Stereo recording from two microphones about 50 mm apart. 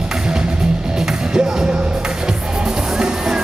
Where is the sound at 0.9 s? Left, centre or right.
Centre.